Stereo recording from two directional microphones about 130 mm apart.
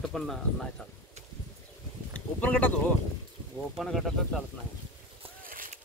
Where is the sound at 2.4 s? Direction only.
10° left (ahead or behind).